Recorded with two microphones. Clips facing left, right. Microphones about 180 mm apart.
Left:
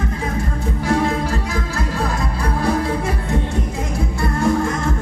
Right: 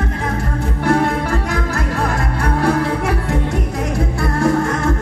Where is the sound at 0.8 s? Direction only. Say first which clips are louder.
Right 3 dB; 60° right (ahead or behind).